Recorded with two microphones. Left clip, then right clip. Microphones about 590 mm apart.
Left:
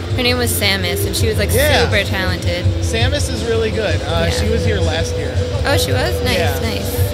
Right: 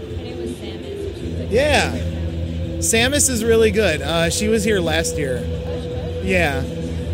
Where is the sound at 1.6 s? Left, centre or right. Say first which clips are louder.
Left 2 dB; right.